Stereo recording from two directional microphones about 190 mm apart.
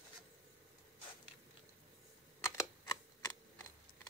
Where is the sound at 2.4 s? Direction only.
15° left (ahead or behind).